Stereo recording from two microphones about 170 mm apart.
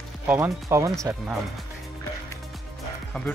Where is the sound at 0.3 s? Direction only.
15° right (ahead or behind).